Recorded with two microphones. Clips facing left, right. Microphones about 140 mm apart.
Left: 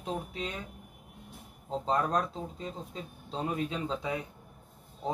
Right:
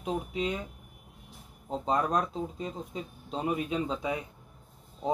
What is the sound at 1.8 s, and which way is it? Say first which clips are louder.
Speech: right 1 dB; 15° right (ahead or behind).